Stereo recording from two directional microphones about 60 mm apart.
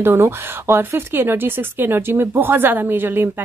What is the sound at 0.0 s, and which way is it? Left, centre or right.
Speech, right.